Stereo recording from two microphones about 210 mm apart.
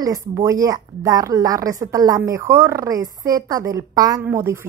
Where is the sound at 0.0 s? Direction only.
15° right (ahead or behind).